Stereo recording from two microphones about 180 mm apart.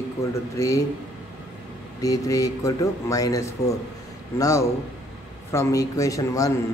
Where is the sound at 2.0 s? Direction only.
20° left (ahead or behind).